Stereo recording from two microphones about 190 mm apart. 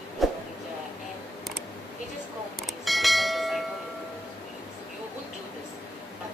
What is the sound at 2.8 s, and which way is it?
Bell, centre (ahead or behind).